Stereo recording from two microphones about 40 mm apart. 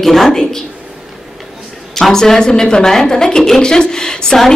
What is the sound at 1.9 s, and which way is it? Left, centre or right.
A woman's voice, centre.